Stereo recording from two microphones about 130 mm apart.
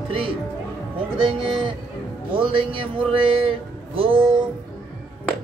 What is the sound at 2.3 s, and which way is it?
Speech, 40° right (ahead or behind).